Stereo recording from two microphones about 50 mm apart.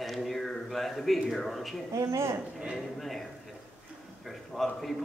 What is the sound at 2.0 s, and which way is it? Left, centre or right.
Speech, right.